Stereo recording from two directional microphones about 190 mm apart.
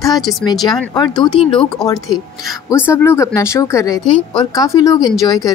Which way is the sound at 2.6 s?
15° left (ahead or behind).